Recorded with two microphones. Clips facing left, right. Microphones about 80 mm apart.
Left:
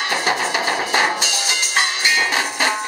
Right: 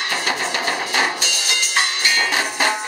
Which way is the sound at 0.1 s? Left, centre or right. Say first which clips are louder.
Left 3 dB; centre.